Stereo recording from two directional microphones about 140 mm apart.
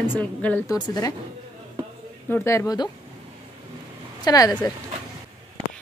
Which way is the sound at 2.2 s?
15° left (ahead or behind).